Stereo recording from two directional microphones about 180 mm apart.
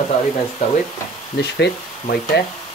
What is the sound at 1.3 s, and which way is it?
Speech, 70° left (ahead or behind).